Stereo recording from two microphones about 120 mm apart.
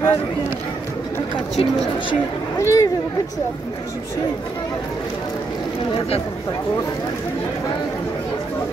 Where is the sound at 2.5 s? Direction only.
25° left (ahead or behind).